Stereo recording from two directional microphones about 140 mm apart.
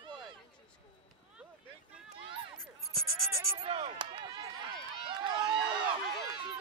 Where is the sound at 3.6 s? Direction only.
45° right (ahead or behind).